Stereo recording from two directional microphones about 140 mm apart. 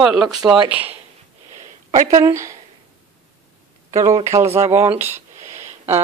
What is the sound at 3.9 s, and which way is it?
A woman's voice, 20° right (ahead or behind).